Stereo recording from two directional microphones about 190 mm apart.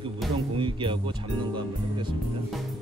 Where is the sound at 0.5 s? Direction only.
25° right (ahead or behind).